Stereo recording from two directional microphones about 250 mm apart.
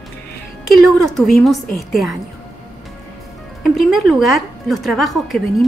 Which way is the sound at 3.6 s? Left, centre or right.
Centre.